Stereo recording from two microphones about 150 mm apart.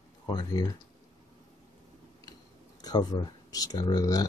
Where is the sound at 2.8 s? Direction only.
25° left (ahead or behind).